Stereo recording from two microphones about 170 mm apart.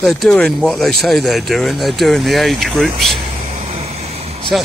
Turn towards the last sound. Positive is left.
turn(degrees=-35)  # may be behind; listen again after turning